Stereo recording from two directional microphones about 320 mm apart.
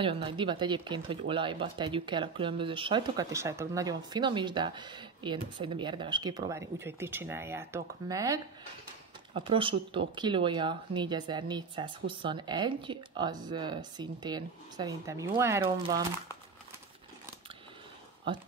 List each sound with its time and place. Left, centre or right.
0.0 s speech: centre
18.3 s speech: centre